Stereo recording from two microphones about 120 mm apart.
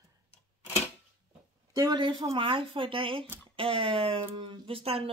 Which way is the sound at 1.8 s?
40° right (ahead or behind).